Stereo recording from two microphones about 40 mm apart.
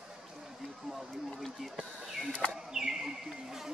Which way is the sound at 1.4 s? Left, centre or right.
Centre.